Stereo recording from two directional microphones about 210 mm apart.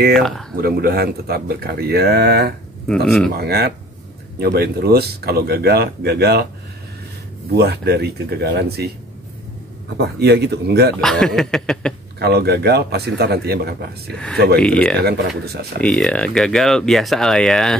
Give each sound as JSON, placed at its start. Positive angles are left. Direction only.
{"t": 0.6, "sound": "speech", "side_deg": -45}
{"t": 7.5, "sound": "speech", "side_deg": -50}
{"t": 9.9, "sound": "speech", "side_deg": -50}
{"t": 11.0, "sound": "speech", "side_deg": 0}
{"t": 12.2, "sound": "speech", "side_deg": -50}
{"t": 14.1, "sound": "speech", "side_deg": 5}
{"t": 15.0, "sound": "speech", "side_deg": -50}
{"t": 15.8, "sound": "speech", "side_deg": 5}